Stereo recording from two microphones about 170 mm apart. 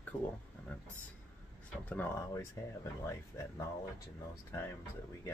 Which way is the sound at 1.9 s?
10° left (ahead or behind).